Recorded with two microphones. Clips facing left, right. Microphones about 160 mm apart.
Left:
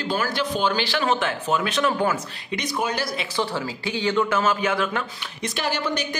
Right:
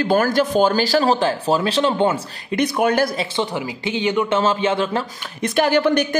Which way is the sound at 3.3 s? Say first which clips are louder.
Right 3 dB; 20° right (ahead or behind).